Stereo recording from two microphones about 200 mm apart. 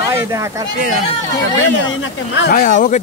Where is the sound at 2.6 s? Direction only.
40° left (ahead or behind).